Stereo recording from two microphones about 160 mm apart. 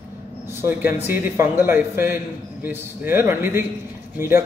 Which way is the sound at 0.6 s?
15° right (ahead or behind).